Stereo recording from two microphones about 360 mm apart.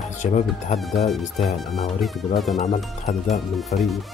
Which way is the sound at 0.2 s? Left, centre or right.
Centre.